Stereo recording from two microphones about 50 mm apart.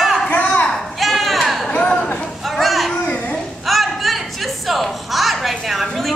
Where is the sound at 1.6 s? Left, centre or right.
Left.